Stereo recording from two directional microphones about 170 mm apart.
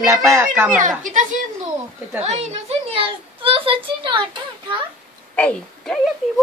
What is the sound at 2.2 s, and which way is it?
A woman's voice, 40° right (ahead or behind).